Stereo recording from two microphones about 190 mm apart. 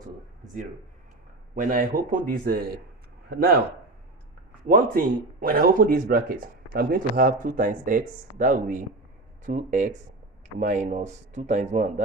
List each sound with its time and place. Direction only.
1.5 s speech: 45° right (ahead or behind)
4.6 s speech: 50° right (ahead or behind)